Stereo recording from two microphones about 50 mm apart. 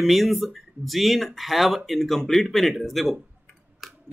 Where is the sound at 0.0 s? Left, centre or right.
Centre.